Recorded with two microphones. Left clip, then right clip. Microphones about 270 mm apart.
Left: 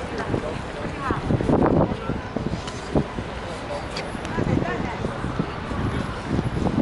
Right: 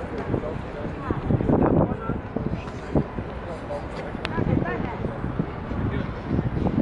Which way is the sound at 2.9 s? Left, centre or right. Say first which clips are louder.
Left 1 dB; right.